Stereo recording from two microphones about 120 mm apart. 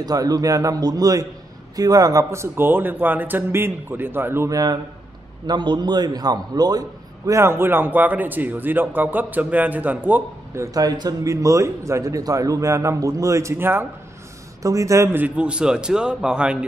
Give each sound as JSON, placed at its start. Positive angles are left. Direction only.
{"t": 0.0, "sound": "a man's voice", "side_deg": -30}
{"t": 15.2, "sound": "a man's voice", "side_deg": -10}